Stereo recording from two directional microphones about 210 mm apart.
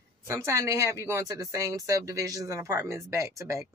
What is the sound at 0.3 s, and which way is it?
Female singing, 15° right (ahead or behind).